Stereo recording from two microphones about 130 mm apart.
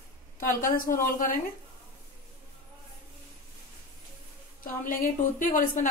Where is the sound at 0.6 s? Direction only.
90° left.